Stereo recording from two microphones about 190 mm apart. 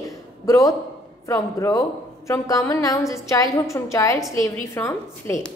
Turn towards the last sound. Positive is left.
turn(degrees=15)  # may be behind; listen again after turning